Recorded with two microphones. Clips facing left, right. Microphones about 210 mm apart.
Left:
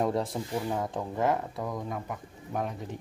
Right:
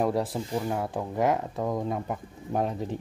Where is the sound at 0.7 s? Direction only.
5° right (ahead or behind).